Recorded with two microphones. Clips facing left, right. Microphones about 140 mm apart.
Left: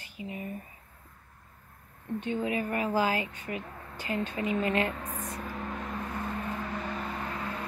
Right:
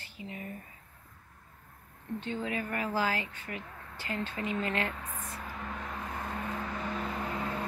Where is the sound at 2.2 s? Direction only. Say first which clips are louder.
Left 5 dB; 15° left (ahead or behind).